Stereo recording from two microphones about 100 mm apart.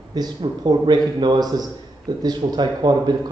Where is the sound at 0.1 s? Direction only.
45° right (ahead or behind).